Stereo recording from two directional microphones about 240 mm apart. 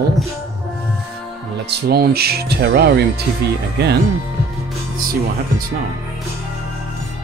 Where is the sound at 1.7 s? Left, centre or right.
Right.